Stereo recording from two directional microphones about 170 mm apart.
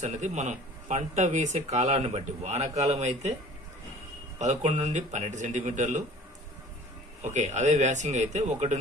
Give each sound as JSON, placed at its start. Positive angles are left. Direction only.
{"t": 0.0, "sound": "speech", "side_deg": -45}
{"t": 4.4, "sound": "speech", "side_deg": -45}
{"t": 7.2, "sound": "speech", "side_deg": -45}